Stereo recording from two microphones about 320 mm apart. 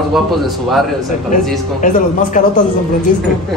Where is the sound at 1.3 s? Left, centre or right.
Left.